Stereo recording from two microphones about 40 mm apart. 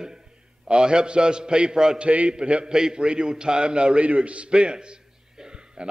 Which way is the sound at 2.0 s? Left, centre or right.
Right.